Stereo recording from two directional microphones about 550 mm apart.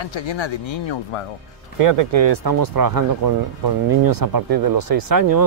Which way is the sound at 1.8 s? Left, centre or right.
Right.